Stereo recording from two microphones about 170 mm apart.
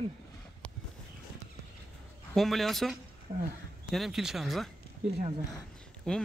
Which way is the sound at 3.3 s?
25° right (ahead or behind).